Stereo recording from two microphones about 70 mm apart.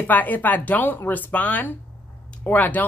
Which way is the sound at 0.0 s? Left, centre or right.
Left.